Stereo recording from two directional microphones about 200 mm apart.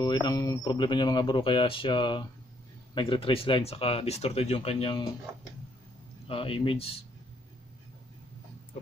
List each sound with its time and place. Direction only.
0.0 s speech: 20° left (ahead or behind)
6.2 s speech: 25° left (ahead or behind)